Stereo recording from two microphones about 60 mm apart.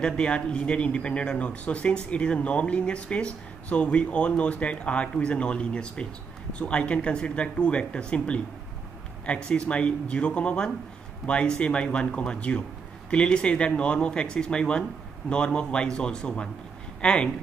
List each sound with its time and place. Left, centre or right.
0.0 s speech: centre
9.5 s speech: centre